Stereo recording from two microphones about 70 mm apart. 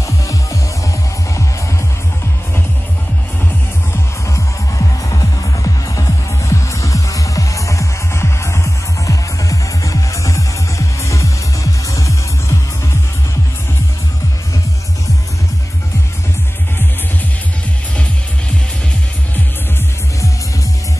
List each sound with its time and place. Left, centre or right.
0.0 s music: left
4.7 s music: left